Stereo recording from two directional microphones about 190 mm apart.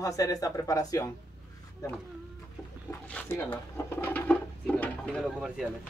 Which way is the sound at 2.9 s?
10° left (ahead or behind).